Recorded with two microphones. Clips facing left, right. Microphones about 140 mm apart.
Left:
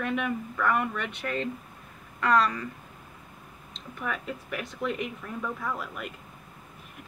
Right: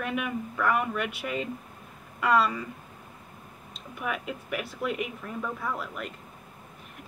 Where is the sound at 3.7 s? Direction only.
10° right (ahead or behind).